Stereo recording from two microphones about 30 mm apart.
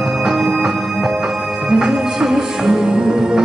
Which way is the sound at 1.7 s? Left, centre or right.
Right.